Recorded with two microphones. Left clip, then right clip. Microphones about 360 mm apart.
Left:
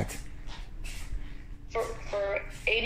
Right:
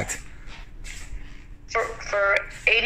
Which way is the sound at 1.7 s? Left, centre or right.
Right.